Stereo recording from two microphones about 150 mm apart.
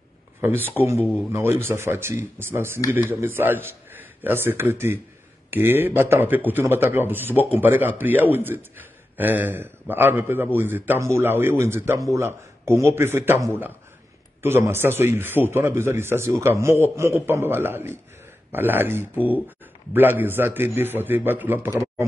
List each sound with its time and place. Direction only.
0.7 s a man's voice: 20° right (ahead or behind)